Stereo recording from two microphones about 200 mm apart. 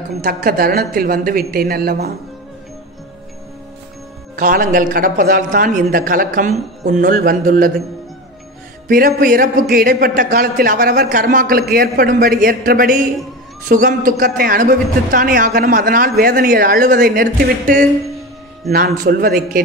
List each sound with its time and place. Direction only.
0.2 s speech: 50° right (ahead or behind)
4.4 s speech: 45° right (ahead or behind)
8.8 s speech: 45° right (ahead or behind)